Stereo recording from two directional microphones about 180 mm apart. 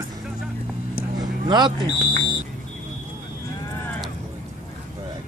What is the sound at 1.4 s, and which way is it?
Speech, 25° right (ahead or behind).